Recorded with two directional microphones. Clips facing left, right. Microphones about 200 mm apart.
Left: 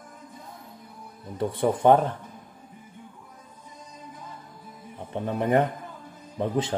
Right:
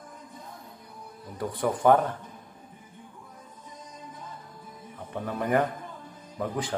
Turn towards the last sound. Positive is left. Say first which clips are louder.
# left 5 dB
turn(degrees=25)  # may be behind; listen again after turning